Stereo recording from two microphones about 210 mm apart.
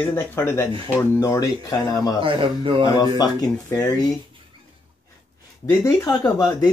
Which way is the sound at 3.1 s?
20° left (ahead or behind).